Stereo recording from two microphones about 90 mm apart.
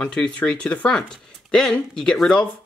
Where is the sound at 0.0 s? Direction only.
10° left (ahead or behind).